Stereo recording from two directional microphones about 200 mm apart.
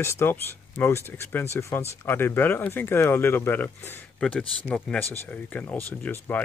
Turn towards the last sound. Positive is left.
turn(degrees=10)  # may be behind; listen again after turning